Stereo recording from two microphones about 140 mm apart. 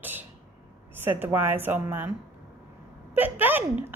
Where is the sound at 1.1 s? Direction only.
15° right (ahead or behind).